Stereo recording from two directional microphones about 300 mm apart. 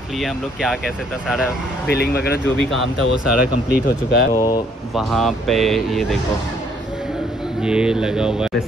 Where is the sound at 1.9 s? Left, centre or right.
Left.